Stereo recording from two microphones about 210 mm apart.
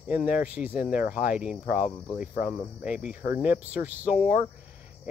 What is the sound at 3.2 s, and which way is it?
Speech, 40° left (ahead or behind).